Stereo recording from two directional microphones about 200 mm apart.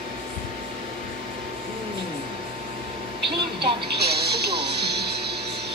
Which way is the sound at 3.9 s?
55° right (ahead or behind).